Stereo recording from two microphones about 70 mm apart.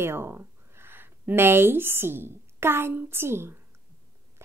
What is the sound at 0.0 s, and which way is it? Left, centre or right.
Speech, right.